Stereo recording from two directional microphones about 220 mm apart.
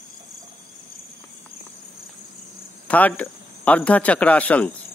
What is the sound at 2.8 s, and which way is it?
Speech, 5° left (ahead or behind).